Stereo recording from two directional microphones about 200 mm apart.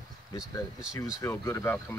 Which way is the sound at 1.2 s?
15° left (ahead or behind).